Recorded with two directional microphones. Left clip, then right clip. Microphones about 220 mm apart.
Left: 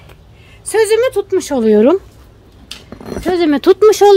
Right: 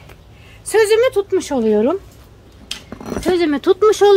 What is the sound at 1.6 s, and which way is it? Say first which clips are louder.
Speech: left 7 dB; 50° left (ahead or behind).